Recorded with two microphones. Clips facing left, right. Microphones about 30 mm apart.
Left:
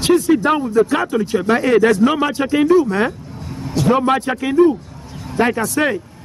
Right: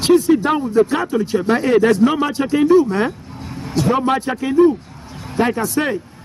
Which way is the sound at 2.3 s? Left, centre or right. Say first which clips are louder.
Even; left.